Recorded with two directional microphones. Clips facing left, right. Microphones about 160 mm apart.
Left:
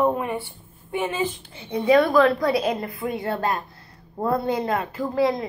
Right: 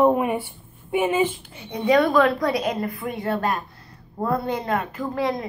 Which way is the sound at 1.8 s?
25° left (ahead or behind).